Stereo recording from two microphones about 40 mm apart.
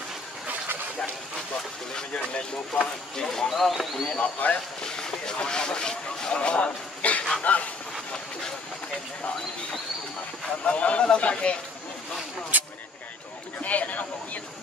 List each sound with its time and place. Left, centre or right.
2.0 s speech: left
3.2 s speech: centre
3.4 s speech: centre
4.2 s speech: left
4.8 s speech: centre; by 7.7 s left
10.6 s speech: left
12.5 s speech: right
13.6 s speech: left